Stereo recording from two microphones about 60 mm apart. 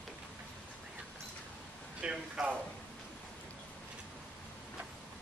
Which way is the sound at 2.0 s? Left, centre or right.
Centre.